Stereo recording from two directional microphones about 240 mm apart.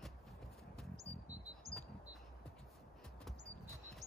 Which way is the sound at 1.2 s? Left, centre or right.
Right.